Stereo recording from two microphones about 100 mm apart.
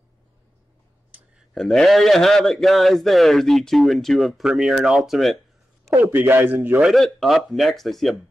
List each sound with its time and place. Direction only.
1.5 s a man's voice: 5° left (ahead or behind)
5.9 s a man's voice: 25° right (ahead or behind)
6.9 s a man's voice: centre (ahead or behind)